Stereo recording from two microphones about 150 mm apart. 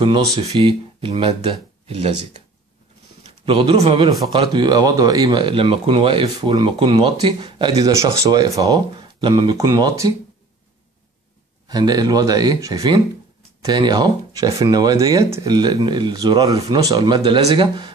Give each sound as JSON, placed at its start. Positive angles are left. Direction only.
{"t": 0.0, "sound": "speech", "side_deg": -30}
{"t": 3.4, "sound": "speech", "side_deg": -35}
{"t": 11.6, "sound": "speech", "side_deg": -25}